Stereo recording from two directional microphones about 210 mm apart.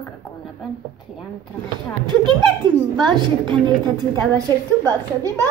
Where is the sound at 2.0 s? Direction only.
20° right (ahead or behind).